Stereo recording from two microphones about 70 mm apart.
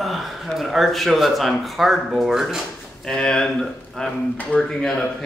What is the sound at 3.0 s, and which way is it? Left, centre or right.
Speech, centre.